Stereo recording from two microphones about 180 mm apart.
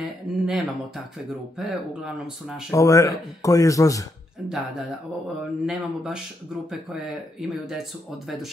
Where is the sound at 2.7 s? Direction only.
15° left (ahead or behind).